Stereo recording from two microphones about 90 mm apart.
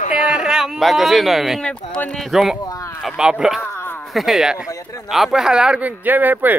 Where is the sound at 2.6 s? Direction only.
40° left (ahead or behind).